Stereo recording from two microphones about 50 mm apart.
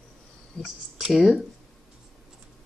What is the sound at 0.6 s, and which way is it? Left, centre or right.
Speech, centre.